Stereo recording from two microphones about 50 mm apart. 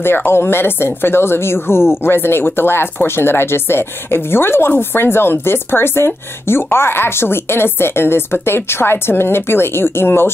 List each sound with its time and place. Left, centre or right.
0.0 s speech: left